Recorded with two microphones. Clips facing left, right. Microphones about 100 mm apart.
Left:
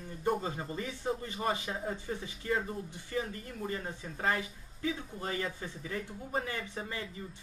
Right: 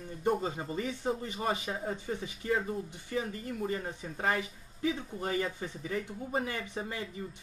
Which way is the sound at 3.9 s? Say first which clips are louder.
Right 1 dB; 10° right (ahead or behind).